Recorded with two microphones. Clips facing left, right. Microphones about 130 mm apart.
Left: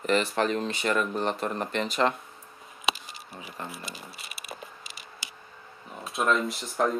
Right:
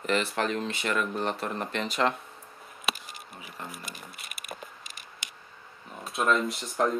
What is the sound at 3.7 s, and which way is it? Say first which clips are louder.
Speech: left 2 dB; 50° right (ahead or behind).